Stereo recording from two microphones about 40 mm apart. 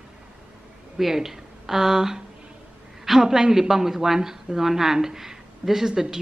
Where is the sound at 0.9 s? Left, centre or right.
Centre.